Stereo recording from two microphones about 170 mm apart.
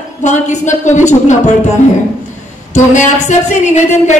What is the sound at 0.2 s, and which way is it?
A woman's voice, 45° left (ahead or behind).